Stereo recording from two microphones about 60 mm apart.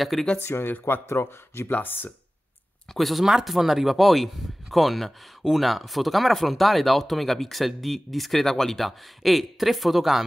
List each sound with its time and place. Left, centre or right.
0.0 s speech: centre
0.4 s speech: left
1.7 s speech: left
2.9 s speech: centre